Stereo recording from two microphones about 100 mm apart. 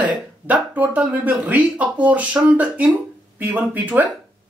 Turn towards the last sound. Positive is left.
turn(degrees=-15)  # may be behind; listen again after turning